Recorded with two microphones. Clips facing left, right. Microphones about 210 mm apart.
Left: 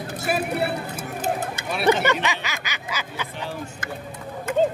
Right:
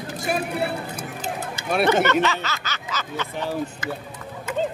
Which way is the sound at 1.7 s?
50° right (ahead or behind).